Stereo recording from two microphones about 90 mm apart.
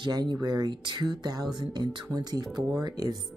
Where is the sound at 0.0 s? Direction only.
55° right (ahead or behind).